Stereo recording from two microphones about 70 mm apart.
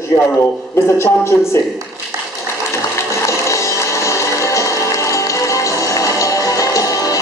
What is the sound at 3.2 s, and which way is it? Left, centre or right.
Music, left.